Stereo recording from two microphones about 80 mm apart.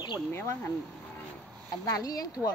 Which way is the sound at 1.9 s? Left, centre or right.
Left.